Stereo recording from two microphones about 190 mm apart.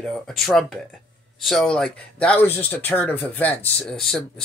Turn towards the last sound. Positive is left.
turn(degrees=0)  # may be behind; listen again after turning